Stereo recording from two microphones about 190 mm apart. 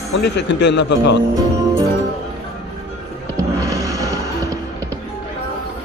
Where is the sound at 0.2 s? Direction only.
65° left (ahead or behind).